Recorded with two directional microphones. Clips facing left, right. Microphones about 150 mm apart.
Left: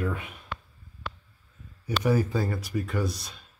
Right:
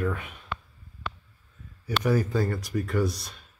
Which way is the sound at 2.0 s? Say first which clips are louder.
Even; 10° left (ahead or behind).